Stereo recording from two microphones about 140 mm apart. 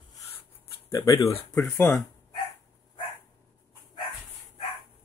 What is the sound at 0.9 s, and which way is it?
Speech, 25° left (ahead or behind).